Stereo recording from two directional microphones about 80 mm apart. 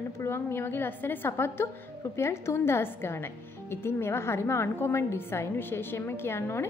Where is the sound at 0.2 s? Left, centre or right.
Left.